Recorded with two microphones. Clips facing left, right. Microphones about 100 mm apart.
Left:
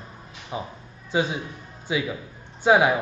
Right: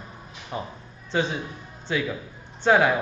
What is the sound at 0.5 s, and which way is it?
A man's voice, 5° left (ahead or behind).